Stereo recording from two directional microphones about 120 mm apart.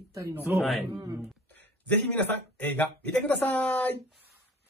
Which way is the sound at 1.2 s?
15° left (ahead or behind).